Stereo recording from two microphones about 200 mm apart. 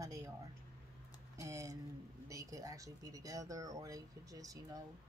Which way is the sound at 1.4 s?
15° right (ahead or behind).